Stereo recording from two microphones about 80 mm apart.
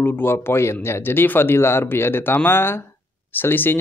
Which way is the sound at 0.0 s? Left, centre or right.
Left.